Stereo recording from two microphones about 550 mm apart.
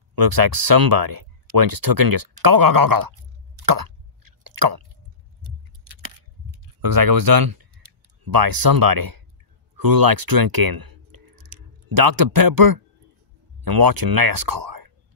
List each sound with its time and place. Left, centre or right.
0.1 s speech: right
3.6 s plop: right
5.4 s keys jangling: right
6.5 s speech: right